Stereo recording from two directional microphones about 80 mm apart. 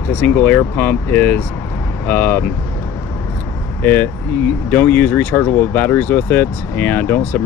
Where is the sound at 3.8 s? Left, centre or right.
Left.